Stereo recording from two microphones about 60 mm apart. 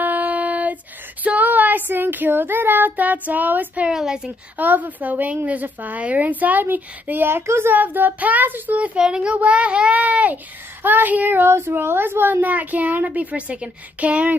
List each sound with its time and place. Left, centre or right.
0.0 s a sound: right
1.2 s child singing: right
3.9 s a woman's voice: centre
4.6 s a woman's voice: right
7.7 s a woman's voice: right
8.9 s a woman's voice: centre